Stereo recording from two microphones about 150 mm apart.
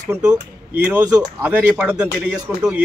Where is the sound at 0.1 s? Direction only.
20° right (ahead or behind).